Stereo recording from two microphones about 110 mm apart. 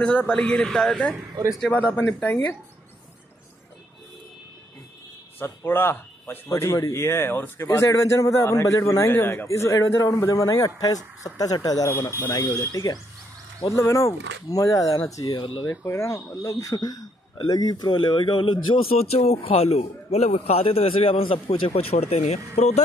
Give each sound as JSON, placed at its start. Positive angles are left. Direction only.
{"t": 0.0, "sound": "speech", "side_deg": 15}
{"t": 5.4, "sound": "speech", "side_deg": 20}
{"t": 15.6, "sound": "speech", "side_deg": 25}